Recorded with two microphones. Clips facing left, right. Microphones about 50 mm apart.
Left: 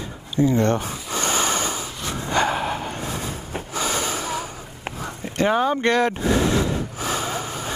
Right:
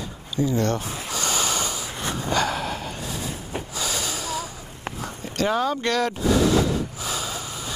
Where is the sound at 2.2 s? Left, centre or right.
Left.